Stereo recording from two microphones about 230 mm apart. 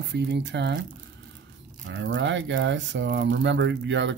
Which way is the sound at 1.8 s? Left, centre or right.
Right.